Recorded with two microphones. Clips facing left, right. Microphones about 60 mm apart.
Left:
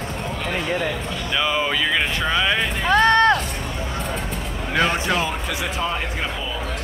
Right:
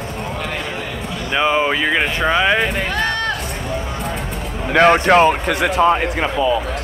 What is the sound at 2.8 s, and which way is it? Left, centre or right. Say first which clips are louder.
Run: left 5 dB; left.